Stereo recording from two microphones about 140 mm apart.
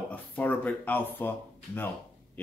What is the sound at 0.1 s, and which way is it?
Speech, 10° left (ahead or behind).